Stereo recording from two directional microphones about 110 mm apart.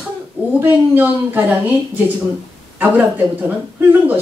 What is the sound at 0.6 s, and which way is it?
Speech, 15° right (ahead or behind).